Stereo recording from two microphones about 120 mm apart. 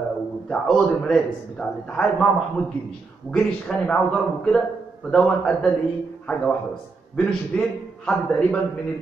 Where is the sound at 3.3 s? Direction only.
10° left (ahead or behind).